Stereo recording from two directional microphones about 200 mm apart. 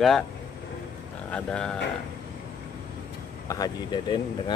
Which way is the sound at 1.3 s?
5° left (ahead or behind).